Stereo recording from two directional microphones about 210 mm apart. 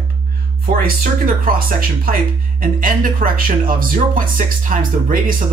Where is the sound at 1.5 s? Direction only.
45° right (ahead or behind).